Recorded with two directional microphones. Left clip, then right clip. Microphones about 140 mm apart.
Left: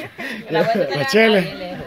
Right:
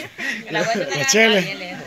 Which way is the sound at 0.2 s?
80° left.